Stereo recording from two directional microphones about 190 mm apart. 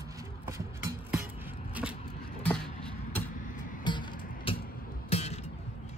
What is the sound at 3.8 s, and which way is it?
Music, 25° left (ahead or behind).